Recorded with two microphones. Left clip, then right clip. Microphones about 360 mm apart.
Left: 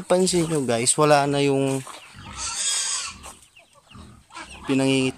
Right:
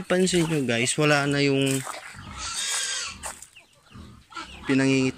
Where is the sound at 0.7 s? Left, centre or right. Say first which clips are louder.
Left 5 dB; centre.